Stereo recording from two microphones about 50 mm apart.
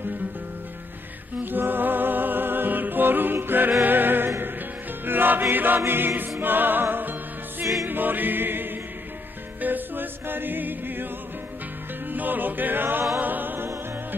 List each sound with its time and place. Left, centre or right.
1.4 s music: right
5.9 s choir: right
6.4 s music: right
7.9 s choir: right
9.6 s music: right
12.1 s music: right